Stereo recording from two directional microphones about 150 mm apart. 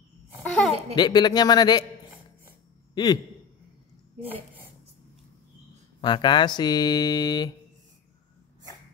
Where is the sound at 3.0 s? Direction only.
25° left (ahead or behind).